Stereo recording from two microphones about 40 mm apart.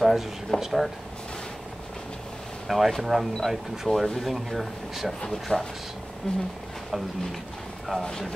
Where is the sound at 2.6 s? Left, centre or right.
Centre.